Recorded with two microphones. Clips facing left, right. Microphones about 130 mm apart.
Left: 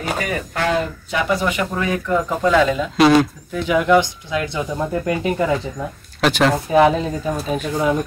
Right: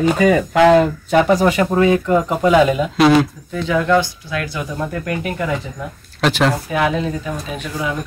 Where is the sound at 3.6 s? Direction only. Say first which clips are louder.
Left 1 dB; 10° left (ahead or behind).